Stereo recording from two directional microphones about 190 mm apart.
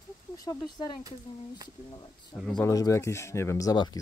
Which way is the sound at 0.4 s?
20° left (ahead or behind).